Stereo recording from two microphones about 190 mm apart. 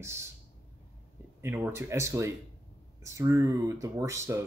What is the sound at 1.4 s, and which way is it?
Speech, 10° right (ahead or behind).